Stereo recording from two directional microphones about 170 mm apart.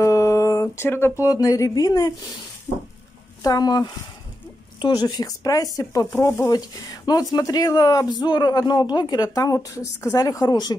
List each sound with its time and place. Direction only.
0.0 s a sound: 20° left (ahead or behind)
1.3 s speech: 20° left (ahead or behind)
3.4 s speech: 25° left (ahead or behind)